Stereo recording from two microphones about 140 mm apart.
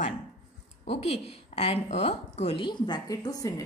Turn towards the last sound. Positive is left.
turn(degrees=25)  # may be behind; listen again after turning